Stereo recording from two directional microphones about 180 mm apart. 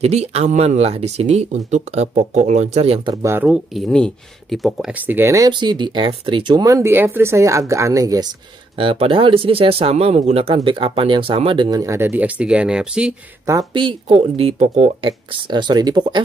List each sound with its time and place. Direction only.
0.0 s speech: 35° right (ahead or behind); by 8.3 s 20° right (ahead or behind)
8.7 s speech: 30° right (ahead or behind); by 13.1 s 5° right (ahead or behind)
13.5 s speech: 25° right (ahead or behind)